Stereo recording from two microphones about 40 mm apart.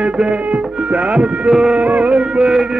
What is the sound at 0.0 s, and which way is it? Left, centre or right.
Music, right.